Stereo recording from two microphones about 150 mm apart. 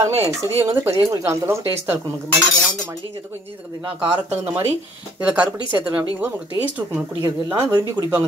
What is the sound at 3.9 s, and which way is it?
Speech, 10° right (ahead or behind).